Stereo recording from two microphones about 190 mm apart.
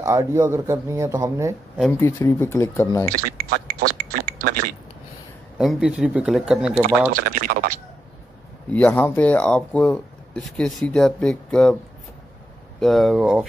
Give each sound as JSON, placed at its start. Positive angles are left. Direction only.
{"t": 0.0, "sound": "speech", "side_deg": -15}
{"t": 1.8, "sound": "speech", "side_deg": 10}
{"t": 3.8, "sound": "a sound", "side_deg": -50}
{"t": 5.6, "sound": "speech", "side_deg": -5}
{"t": 7.2, "sound": "speech", "side_deg": -50}
{"t": 8.6, "sound": "speech", "side_deg": 10}
{"t": 12.8, "sound": "speech", "side_deg": 0}